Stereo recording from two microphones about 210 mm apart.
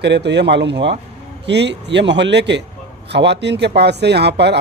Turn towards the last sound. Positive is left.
turn(degrees=-55)  # may be behind; listen again after turning